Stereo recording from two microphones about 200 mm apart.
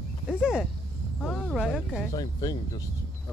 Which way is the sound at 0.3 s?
Centre (ahead or behind).